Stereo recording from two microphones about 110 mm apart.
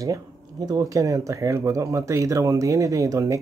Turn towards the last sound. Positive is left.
turn(degrees=-30)  # may be behind; listen again after turning